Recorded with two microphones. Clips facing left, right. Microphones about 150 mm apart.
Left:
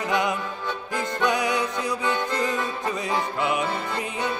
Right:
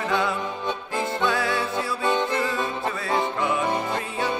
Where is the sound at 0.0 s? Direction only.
20° left (ahead or behind).